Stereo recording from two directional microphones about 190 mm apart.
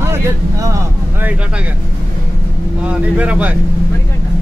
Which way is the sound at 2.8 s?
5° right (ahead or behind).